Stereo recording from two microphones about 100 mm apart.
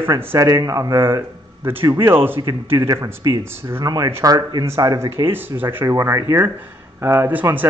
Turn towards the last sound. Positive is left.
turn(degrees=-20)  # may be behind; listen again after turning